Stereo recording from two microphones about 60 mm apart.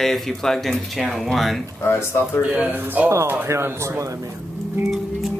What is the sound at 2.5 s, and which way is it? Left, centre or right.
Speech, right.